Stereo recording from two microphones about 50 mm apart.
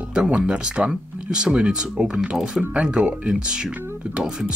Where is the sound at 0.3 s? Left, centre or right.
Centre.